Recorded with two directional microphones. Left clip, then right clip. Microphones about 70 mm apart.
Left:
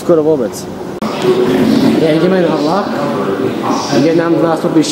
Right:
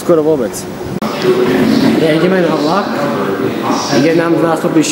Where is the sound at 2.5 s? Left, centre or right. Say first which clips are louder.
Even; right.